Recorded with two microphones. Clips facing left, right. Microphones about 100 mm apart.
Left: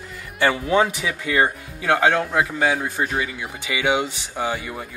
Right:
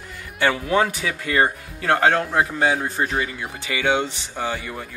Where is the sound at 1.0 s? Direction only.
10° left (ahead or behind).